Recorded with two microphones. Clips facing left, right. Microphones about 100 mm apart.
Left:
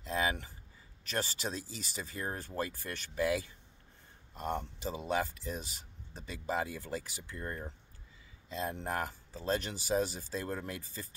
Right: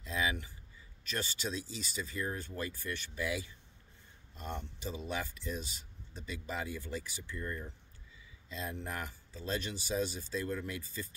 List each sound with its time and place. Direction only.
0.1 s speech: 40° left (ahead or behind)
5.1 s speech: 40° left (ahead or behind)